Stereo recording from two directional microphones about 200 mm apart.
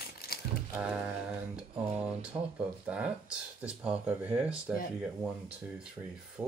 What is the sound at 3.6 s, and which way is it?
Speech, 5° right (ahead or behind).